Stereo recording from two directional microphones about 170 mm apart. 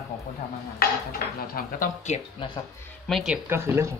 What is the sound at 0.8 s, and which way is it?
Dishes, 65° left (ahead or behind).